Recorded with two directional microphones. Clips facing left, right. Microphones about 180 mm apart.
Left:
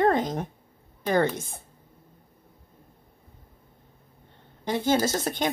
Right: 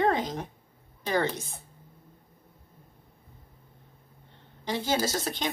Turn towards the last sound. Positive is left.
turn(degrees=50)  # may be behind; listen again after turning